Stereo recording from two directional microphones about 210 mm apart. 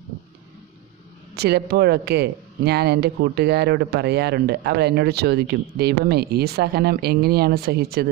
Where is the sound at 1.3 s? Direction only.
50° right (ahead or behind).